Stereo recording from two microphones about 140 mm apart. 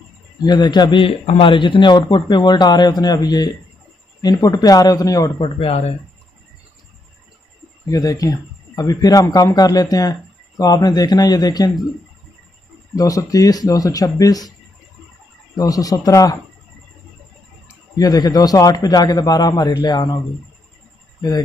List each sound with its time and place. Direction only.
0.5 s a man's voice: 30° left (ahead or behind)
5.6 s speech: 50° left (ahead or behind)
7.8 s a man's voice: 25° left (ahead or behind)
12.9 s a man's voice: 25° left (ahead or behind)
15.5 s a man's voice: 25° left (ahead or behind)
17.9 s a man's voice: 25° left (ahead or behind)
21.2 s speech: 30° left (ahead or behind)